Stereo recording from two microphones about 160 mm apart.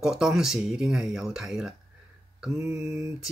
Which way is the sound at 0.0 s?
5° right (ahead or behind).